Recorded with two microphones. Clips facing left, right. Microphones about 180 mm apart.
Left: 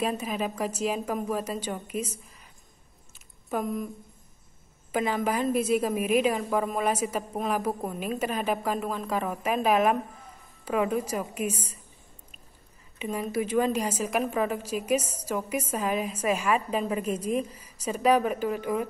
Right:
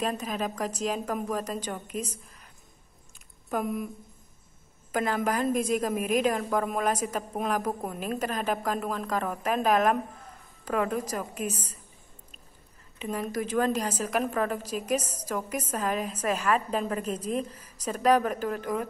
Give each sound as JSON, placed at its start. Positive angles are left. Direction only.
{"t": 0.0, "sound": "a woman's voice", "side_deg": 10}
{"t": 3.4, "sound": "speech", "side_deg": -5}
{"t": 4.9, "sound": "a woman's voice", "side_deg": 5}
{"t": 13.0, "sound": "a woman's voice", "side_deg": 10}